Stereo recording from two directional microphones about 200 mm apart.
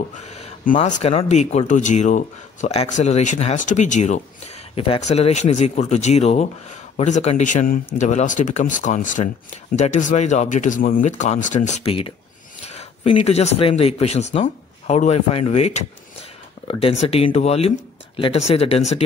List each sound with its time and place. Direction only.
0.2 s speech: 35° left (ahead or behind)